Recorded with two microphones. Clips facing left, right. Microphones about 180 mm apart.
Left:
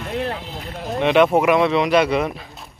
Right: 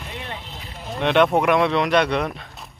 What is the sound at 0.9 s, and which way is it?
Speech, centre (ahead or behind).